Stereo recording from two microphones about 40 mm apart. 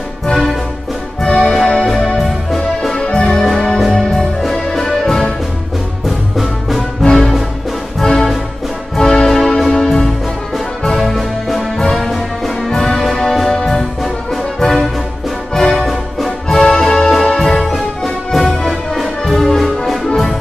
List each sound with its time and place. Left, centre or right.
0.3 s music: centre
1.2 s music: centre
2.0 s music: centre
2.9 s music: centre
6.0 s music: centre